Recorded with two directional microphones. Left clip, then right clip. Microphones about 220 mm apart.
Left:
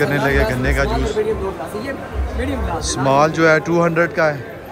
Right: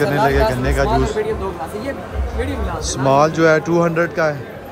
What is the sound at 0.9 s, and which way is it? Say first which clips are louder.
Speech: right 2 dB; 25° right (ahead or behind).